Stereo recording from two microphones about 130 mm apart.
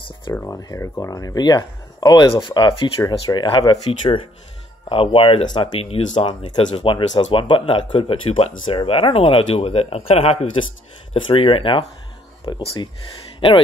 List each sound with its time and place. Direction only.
0.3 s speech: 20° left (ahead or behind); by 12.8 s 35° left (ahead or behind)